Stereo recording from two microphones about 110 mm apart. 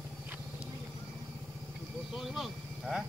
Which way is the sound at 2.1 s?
Centre (ahead or behind).